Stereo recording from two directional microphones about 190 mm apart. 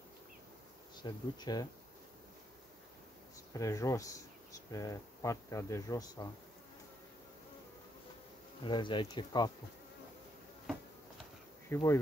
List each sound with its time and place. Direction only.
1.0 s speech: 20° left (ahead or behind)
3.5 s speech: 15° left (ahead or behind)
8.6 s speech: 25° left (ahead or behind)
11.7 s speech: 15° left (ahead or behind)